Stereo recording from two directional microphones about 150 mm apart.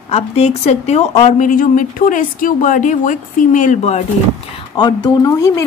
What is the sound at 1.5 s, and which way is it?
Speech, 65° left (ahead or behind).